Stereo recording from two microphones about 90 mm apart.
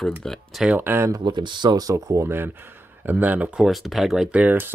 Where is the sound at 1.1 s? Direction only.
55° right (ahead or behind); by 3.6 s 20° right (ahead or behind).